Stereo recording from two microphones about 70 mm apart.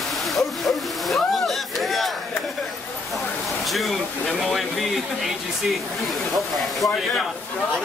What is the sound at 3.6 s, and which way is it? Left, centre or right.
Speech, centre.